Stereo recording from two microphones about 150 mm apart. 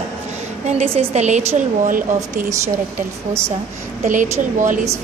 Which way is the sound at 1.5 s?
60° right (ahead or behind).